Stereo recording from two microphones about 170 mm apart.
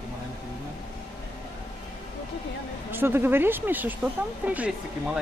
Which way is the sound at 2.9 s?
15° right (ahead or behind).